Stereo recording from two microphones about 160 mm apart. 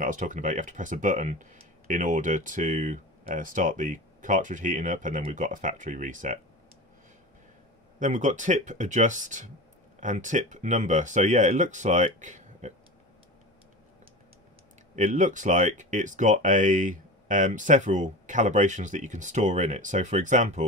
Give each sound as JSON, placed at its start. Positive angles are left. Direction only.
{"t": 0.0, "sound": "speech", "side_deg": -55}
{"t": 8.0, "sound": "speech", "side_deg": -50}
{"t": 15.0, "sound": "speech", "side_deg": -50}